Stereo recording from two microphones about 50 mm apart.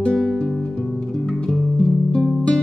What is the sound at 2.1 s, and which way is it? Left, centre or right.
Music, centre.